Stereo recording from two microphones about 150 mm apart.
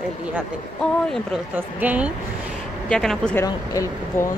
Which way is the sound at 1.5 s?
10° right (ahead or behind).